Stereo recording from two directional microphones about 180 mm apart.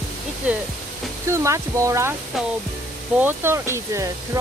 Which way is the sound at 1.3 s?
15° right (ahead or behind).